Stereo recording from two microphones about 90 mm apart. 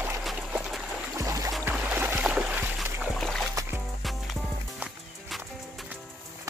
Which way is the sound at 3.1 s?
5° left (ahead or behind).